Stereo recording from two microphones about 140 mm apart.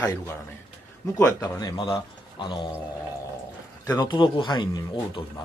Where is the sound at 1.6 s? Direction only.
25° left (ahead or behind).